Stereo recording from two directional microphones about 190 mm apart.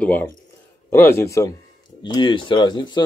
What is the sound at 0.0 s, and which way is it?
A man's voice, 10° left (ahead or behind).